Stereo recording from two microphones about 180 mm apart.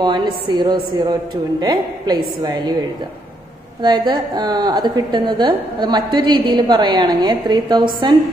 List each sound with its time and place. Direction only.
0.0 s a woman's voice: 25° right (ahead or behind)
3.8 s a woman's voice: 25° right (ahead or behind)